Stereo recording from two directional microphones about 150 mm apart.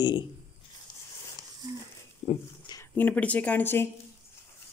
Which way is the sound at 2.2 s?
40° left (ahead or behind).